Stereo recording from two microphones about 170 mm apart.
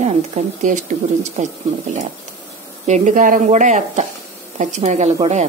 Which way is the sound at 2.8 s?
45° right (ahead or behind).